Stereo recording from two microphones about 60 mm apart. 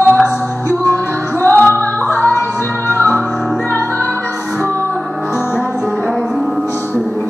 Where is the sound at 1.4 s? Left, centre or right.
Left.